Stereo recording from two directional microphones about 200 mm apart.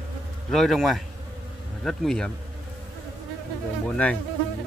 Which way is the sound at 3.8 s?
5° left (ahead or behind).